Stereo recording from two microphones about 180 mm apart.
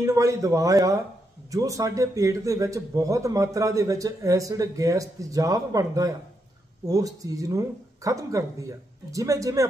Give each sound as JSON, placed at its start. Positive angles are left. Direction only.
{"t": 0.0, "sound": "a man's voice", "side_deg": -15}